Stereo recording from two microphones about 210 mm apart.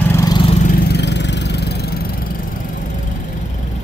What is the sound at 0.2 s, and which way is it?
Vehicle, 20° left (ahead or behind).